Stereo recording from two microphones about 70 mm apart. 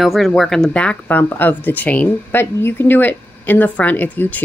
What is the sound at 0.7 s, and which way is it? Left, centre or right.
Speech, centre.